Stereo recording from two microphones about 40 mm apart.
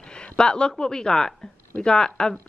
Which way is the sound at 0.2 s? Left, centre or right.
Left.